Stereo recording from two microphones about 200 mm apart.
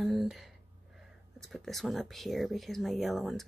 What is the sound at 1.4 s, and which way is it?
Speech, centre (ahead or behind).